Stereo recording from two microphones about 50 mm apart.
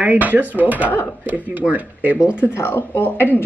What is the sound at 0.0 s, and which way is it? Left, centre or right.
Speech, right.